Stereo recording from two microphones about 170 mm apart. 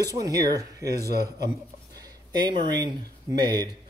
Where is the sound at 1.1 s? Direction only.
70° right (ahead or behind).